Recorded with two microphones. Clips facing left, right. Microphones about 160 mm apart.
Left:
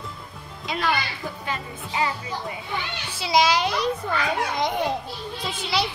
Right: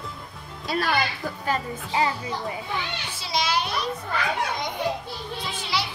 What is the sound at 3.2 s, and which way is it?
Speech, 90° left.